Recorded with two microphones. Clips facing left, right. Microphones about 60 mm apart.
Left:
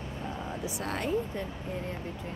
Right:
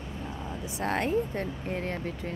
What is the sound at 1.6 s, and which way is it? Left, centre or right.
Speech, right.